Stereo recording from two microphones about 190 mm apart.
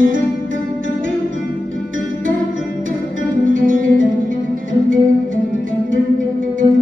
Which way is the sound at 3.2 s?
45° right (ahead or behind).